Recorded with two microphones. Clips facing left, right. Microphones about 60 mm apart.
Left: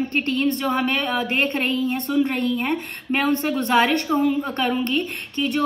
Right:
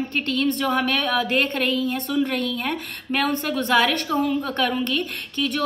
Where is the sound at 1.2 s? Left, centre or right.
Left.